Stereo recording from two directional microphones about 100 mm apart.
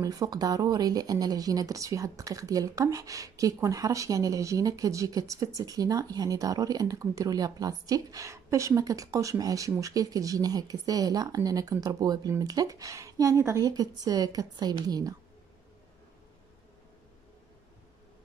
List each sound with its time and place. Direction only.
0.0 s speech: 35° right (ahead or behind)